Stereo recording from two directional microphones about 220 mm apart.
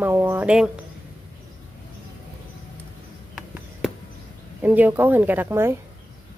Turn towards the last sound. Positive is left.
turn(degrees=-10)  # may be behind; listen again after turning